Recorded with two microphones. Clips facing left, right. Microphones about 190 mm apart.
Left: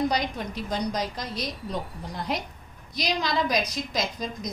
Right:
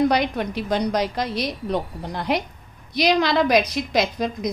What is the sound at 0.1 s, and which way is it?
A woman's voice, 70° right (ahead or behind).